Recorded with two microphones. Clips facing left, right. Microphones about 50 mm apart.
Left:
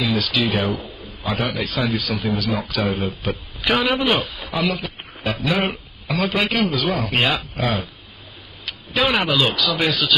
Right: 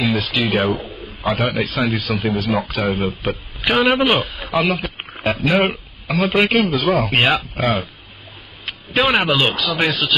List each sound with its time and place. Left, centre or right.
0.1 s speech: right
0.5 s a man's voice: right
2.9 s speech: centre
3.2 s speech: right
6.0 s speech: centre
6.4 s speech: right